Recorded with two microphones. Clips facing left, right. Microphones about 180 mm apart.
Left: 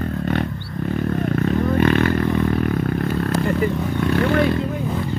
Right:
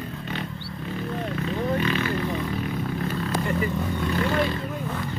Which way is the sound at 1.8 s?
55° left (ahead or behind).